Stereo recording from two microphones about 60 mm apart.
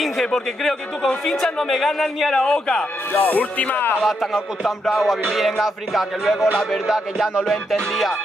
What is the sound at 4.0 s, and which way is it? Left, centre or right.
Speech, centre.